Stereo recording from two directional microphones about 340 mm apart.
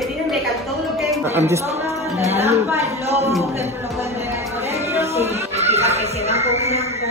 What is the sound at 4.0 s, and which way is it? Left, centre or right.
Music, centre.